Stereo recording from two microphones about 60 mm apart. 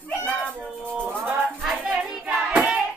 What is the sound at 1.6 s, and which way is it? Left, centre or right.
Music, centre.